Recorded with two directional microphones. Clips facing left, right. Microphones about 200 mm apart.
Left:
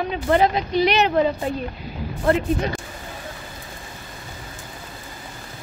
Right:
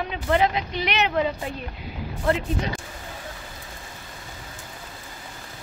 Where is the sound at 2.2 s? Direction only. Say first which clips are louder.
Left 4 dB; 50° left (ahead or behind).